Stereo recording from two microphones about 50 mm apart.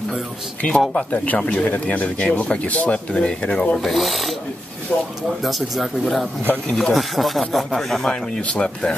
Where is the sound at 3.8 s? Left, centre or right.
Centre.